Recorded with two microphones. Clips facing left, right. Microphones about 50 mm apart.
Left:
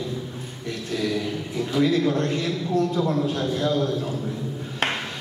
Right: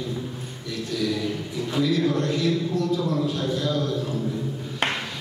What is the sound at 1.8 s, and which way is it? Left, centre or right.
Speech, left.